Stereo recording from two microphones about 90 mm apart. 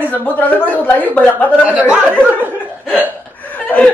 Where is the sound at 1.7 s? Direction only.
15° right (ahead or behind).